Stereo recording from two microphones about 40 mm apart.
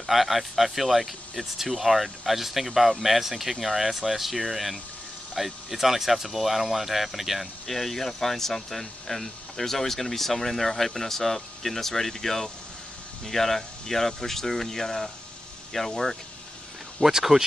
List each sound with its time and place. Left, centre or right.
0.0 s speech: centre
7.6 s speech: centre
17.0 s speech: centre